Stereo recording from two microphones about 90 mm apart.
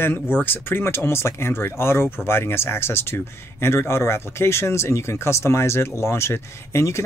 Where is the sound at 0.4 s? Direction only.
25° left (ahead or behind).